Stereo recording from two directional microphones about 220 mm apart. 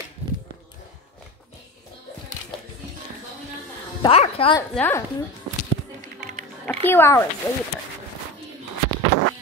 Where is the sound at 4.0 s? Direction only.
25° left (ahead or behind).